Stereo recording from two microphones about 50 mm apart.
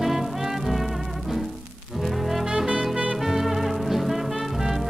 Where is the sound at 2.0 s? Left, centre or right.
Centre.